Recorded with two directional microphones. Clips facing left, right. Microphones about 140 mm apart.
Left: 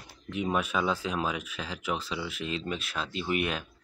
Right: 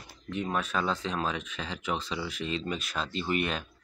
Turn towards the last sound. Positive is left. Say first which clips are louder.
# even
turn(degrees=5)  # may be behind; listen again after turning